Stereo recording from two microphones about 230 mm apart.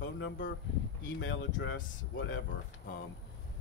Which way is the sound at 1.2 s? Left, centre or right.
Left.